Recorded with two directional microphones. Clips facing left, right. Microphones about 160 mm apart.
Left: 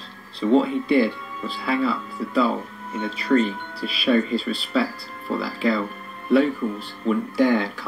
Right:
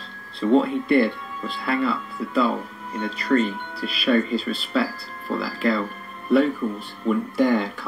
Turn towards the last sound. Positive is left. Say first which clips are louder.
# left 1 dB
turn(degrees=0)  # may be behind; listen again after turning